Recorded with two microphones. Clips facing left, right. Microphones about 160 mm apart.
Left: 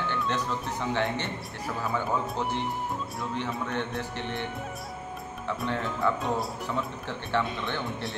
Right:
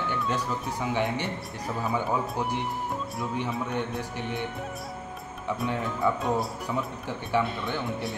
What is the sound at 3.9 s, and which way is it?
Speech, 5° right (ahead or behind).